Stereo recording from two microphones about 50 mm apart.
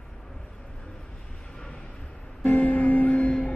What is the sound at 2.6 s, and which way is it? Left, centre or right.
Music, left.